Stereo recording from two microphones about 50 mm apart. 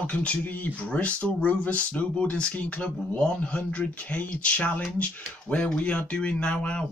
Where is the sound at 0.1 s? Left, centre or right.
Left.